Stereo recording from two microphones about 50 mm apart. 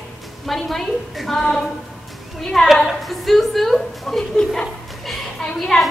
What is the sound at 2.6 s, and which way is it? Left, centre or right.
A woman's voice, centre.